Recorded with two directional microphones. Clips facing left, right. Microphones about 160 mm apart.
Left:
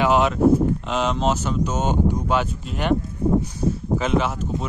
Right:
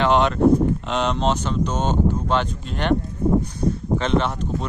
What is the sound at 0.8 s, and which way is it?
Speech, centre (ahead or behind).